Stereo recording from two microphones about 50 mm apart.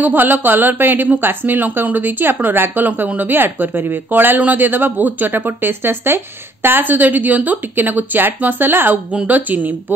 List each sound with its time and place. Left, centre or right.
0.0 s a woman's voice: right